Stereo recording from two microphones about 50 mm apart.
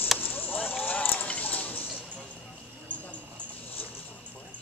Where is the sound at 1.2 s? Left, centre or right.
Left.